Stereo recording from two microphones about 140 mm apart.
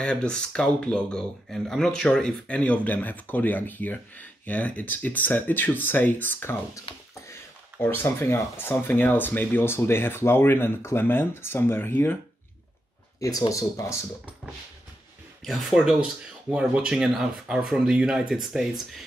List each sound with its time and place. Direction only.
0.0 s speech: 5° left (ahead or behind)
7.8 s speech: 15° left (ahead or behind)
13.2 s speech: 25° left (ahead or behind)
15.4 s speech: centre (ahead or behind)